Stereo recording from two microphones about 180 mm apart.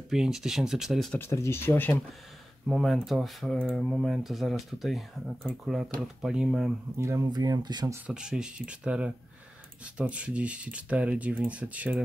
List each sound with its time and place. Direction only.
0.1 s speech: 5° right (ahead or behind)
1.2 s speech: 15° left (ahead or behind); by 6.7 s centre (ahead or behind)
7.0 s speech: 20° right (ahead or behind)
8.1 s speech: 5° right (ahead or behind)